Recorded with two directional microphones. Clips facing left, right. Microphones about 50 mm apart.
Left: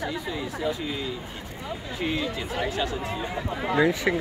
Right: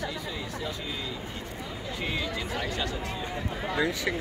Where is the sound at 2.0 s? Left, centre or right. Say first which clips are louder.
Left 5 dB; centre.